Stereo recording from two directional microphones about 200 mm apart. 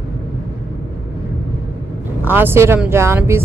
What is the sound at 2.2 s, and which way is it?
Speech, 10° right (ahead or behind).